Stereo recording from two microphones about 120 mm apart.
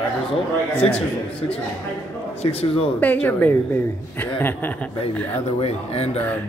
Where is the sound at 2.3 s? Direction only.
55° left (ahead or behind).